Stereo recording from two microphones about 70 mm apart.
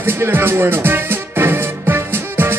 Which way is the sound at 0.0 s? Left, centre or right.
Right.